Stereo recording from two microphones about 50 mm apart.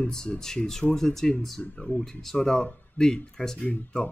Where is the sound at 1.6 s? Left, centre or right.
Left.